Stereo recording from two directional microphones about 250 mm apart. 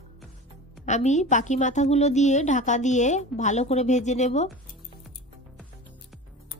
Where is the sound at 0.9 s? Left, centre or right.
Left.